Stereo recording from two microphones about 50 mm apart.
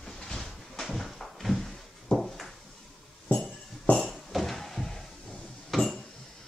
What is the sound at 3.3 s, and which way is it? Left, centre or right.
Music, left.